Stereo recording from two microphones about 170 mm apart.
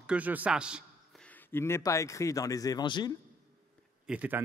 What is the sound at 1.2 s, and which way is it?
Speech, 10° left (ahead or behind).